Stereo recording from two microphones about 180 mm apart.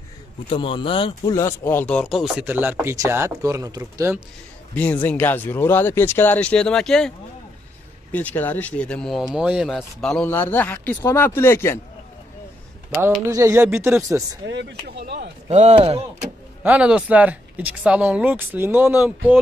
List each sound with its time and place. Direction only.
0.5 s speech: 25° left (ahead or behind)
1.3 s speech: 15° left (ahead or behind); by 4.2 s 15° right (ahead or behind)
4.7 s speech: 10° left (ahead or behind)
13.3 s speech: 15° right (ahead or behind)
14.4 s speech: 75° right (ahead or behind)
15.4 s speech: 35° right (ahead or behind)
16.6 s speech: 5° right (ahead or behind)